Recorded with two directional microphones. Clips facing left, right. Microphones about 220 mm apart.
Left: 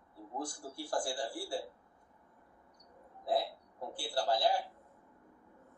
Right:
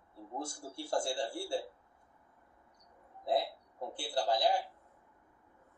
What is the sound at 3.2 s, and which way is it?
A man's voice, 20° right (ahead or behind).